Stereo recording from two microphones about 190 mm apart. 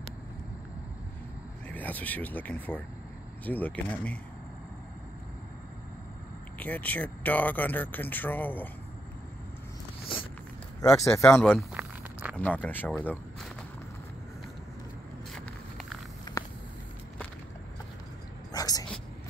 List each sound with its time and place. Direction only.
1.7 s speech: 10° left (ahead or behind)
6.6 s speech: 10° left (ahead or behind)
10.1 s vehicle: 30° left (ahead or behind)
10.8 s speech: 15° left (ahead or behind)
11.5 s a sound: 5° right (ahead or behind)
12.4 s speech: 10° left (ahead or behind)
15.3 s walk: centre (ahead or behind)
16.3 s a sound: 20° left (ahead or behind)
18.5 s a sound: 20° left (ahead or behind)